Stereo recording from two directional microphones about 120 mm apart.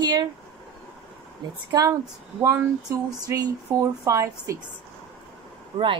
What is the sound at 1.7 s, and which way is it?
Speech, 30° right (ahead or behind).